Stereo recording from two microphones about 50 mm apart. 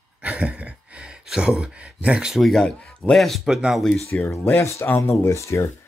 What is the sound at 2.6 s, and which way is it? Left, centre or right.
Speech, centre.